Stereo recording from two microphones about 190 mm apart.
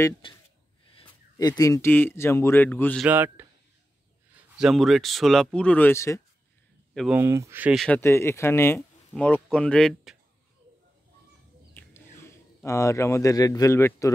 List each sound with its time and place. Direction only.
0.2 s speech: 25° left (ahead or behind); by 3.1 s 5° left (ahead or behind)
3.1 s speech: 10° right (ahead or behind); by 6.2 s 15° left (ahead or behind)
6.9 s a sound: centre (ahead or behind)
7.2 s speech: 15° right (ahead or behind)
7.8 s speech: 10° left (ahead or behind)
11.7 s a sound: 10° left (ahead or behind)